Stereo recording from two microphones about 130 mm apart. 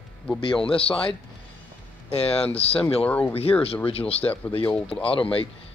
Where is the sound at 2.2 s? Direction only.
50° left (ahead or behind).